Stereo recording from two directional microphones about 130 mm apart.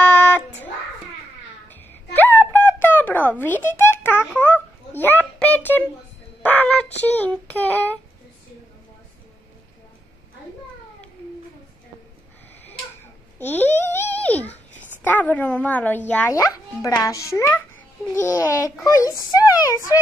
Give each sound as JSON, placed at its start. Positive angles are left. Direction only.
{"t": 0.0, "sound": "music", "side_deg": 10}
{"t": 1.7, "sound": "a sound", "side_deg": 15}
{"t": 6.4, "sound": "speech", "side_deg": 15}
{"t": 13.4, "sound": "babbling", "side_deg": 15}
{"t": 15.0, "sound": "speech", "side_deg": 15}
{"t": 16.3, "sound": "a child's voice", "side_deg": 25}